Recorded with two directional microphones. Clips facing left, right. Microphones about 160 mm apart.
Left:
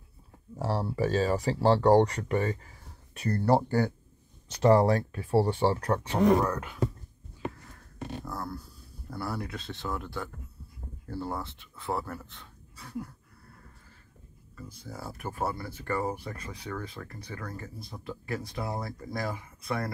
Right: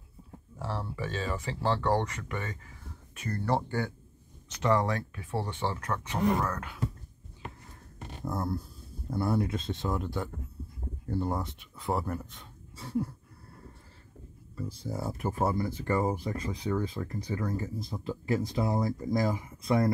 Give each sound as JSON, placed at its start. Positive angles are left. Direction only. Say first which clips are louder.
{"t": 0.6, "sound": "speech", "louder": "left 7 dB", "side_deg": 40}
{"t": 6.4, "sound": "speech", "louder": "left 3 dB", "side_deg": 10}
{"t": 8.3, "sound": "speech", "louder": "right 4 dB", "side_deg": -25}
{"t": 12.7, "sound": "speech", "louder": "right 6 dB", "side_deg": -30}
{"t": 14.5, "sound": "speech", "louder": "right 7 dB", "side_deg": -30}